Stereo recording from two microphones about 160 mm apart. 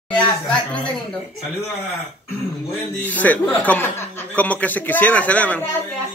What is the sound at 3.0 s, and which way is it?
A woman's voice, 10° left (ahead or behind).